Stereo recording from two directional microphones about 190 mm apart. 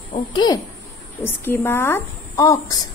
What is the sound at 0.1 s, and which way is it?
Speech, 25° left (ahead or behind).